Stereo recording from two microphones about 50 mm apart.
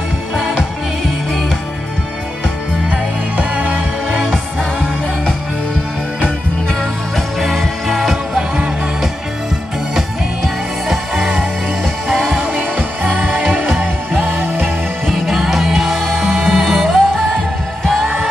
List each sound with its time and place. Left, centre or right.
3.3 s music: right
4.3 s music: centre
9.9 s music: centre
12.5 s music: right
15.0 s music: centre